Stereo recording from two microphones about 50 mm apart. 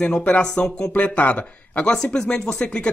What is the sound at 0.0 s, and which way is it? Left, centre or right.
Speech, left.